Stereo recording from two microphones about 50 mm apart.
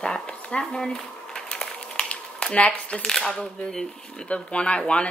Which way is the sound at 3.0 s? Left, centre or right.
Centre.